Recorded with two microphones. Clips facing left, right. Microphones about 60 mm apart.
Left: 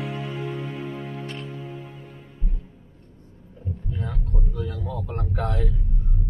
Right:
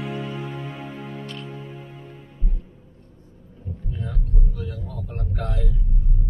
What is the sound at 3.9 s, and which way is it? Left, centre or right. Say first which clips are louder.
Vehicle: even; left.